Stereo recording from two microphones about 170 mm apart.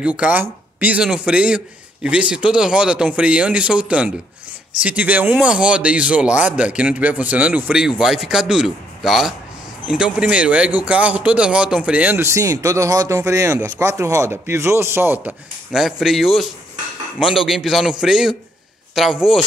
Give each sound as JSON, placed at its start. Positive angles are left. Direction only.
{"t": 0.0, "sound": "speech", "side_deg": -5}
{"t": 15.7, "sound": "speech", "side_deg": 0}